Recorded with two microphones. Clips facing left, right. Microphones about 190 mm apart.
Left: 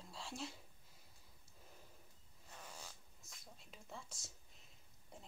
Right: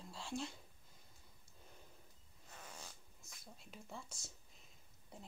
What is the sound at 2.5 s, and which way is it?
Zipper, centre (ahead or behind).